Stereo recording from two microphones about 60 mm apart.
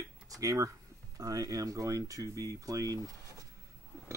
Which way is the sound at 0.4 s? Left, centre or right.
Right.